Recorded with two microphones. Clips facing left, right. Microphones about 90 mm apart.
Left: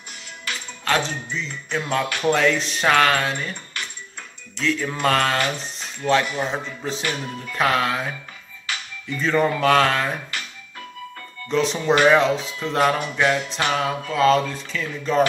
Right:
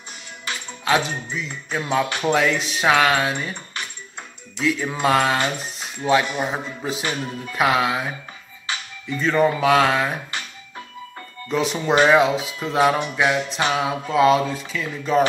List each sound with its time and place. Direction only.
0.5 s music: 25° right (ahead or behind)
0.8 s speech: 10° right (ahead or behind)
2.0 s speech: 20° right (ahead or behind)
2.3 s speech: 5° right (ahead or behind)
4.6 s speech: 10° right (ahead or behind)
7.5 s speech: 10° right (ahead or behind)
9.1 s speech: centre (ahead or behind)
11.4 s speech: 5° right (ahead or behind)
14.5 s speech: 5° right (ahead or behind)